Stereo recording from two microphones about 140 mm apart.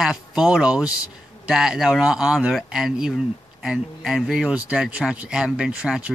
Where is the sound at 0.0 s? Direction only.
5° right (ahead or behind).